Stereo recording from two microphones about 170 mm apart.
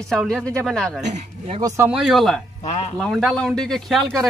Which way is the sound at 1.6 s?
15° right (ahead or behind).